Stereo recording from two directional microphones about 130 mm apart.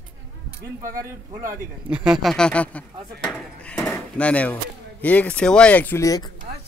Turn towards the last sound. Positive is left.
turn(degrees=30)  # may be behind; listen again after turning